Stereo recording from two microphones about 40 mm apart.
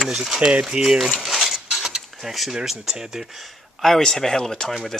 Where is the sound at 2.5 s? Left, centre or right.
Centre.